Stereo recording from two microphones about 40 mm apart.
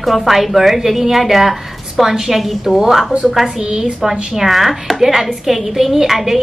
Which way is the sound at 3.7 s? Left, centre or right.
Right.